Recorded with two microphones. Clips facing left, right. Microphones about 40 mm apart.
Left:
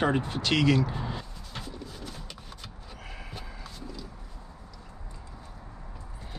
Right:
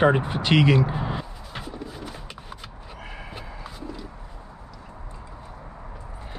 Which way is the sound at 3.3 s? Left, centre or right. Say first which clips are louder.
Right 5 dB; centre.